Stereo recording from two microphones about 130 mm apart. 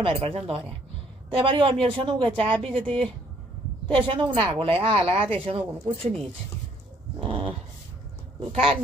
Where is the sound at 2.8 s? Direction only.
10° left (ahead or behind).